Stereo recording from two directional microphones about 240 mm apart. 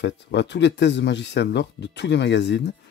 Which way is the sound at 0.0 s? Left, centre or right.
Left.